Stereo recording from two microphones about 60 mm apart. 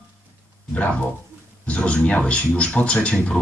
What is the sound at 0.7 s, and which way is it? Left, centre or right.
Speech, left.